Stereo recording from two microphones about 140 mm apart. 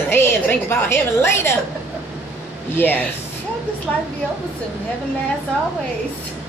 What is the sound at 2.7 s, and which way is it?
Speech, 15° left (ahead or behind).